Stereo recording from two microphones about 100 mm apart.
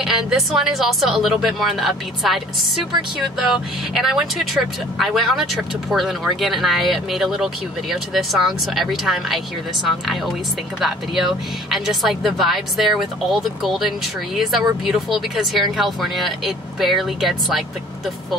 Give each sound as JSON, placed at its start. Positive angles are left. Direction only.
{"t": 0.0, "sound": "speech", "side_deg": -5}
{"t": 11.7, "sound": "speech", "side_deg": 0}